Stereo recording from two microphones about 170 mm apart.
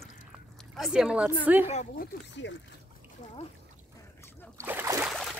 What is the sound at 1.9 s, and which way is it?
Speech, 90° left.